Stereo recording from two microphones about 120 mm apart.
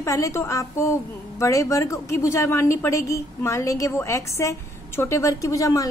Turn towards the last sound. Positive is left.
turn(degrees=30)  # may be behind; listen again after turning